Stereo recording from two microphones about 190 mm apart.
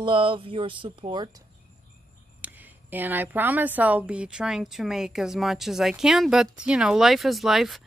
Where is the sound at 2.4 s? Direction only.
10° right (ahead or behind).